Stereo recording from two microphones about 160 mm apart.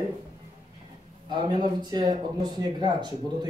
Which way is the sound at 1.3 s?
25° right (ahead or behind).